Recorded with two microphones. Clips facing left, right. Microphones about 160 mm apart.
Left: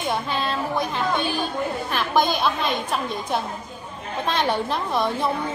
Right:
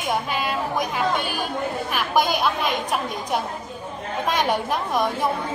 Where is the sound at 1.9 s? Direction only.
10° right (ahead or behind).